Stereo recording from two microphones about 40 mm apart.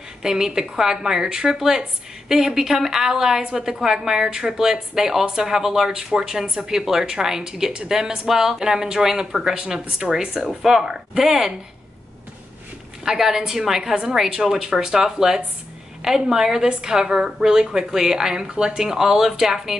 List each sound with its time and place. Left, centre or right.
0.2 s a woman's voice: centre
13.0 s a woman's voice: centre
18.8 s a woman's voice: centre